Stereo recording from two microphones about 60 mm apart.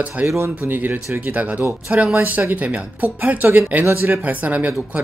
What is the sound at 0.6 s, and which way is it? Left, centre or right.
Speech, right.